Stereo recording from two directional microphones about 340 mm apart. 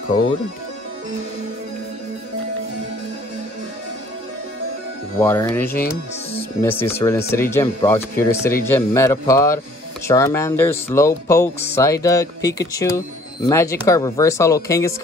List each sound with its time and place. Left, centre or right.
5.2 s speech: centre
5.7 s speech: left
6.6 s speech: centre